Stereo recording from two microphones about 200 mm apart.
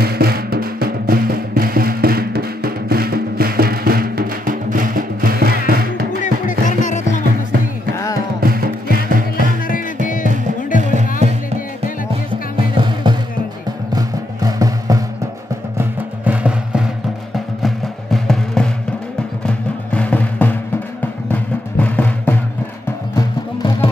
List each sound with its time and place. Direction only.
0.0 s music: 50° right (ahead or behind)
6.8 s music: 40° left (ahead or behind)
7.9 s music: 15° left (ahead or behind)
8.4 s music: 45° right (ahead or behind)
10.8 s music: 35° right (ahead or behind)
12.5 s music: 25° right (ahead or behind)
15.8 s music: 5° right (ahead or behind)
23.1 s music: 20° left (ahead or behind)